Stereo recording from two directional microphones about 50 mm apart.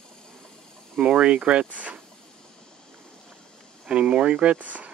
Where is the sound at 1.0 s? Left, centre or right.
Right.